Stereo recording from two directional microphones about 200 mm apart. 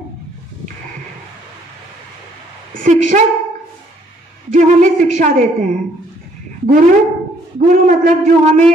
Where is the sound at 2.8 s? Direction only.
40° right (ahead or behind).